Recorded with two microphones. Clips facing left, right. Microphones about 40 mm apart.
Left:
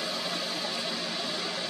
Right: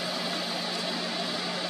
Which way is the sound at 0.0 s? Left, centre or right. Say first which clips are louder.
Right 1 dB; centre.